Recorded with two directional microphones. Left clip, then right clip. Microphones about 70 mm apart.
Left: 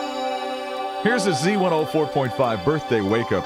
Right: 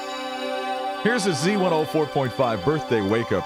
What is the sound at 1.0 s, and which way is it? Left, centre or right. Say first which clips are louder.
Speech: left 2 dB; left.